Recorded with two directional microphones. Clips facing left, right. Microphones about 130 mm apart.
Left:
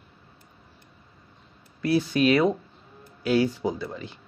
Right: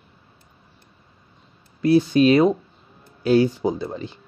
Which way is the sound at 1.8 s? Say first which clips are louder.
Right 6 dB; 25° right (ahead or behind).